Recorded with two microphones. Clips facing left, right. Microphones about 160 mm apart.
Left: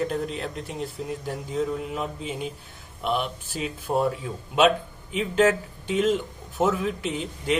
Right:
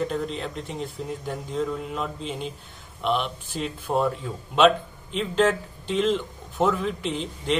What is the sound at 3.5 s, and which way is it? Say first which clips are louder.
A man's voice: right 1 dB; 5° left (ahead or behind).